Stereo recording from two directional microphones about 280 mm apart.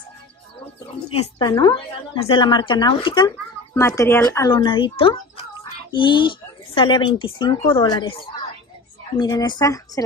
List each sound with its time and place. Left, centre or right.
1.1 s speech: left
9.2 s speech: centre